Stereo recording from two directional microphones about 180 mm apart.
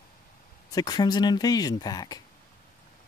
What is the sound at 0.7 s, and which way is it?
Speech, 20° left (ahead or behind).